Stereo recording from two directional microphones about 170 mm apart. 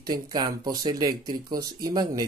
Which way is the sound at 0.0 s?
25° right (ahead or behind).